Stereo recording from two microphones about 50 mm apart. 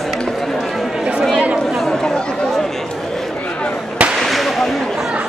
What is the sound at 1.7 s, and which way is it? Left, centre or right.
Chatter, centre.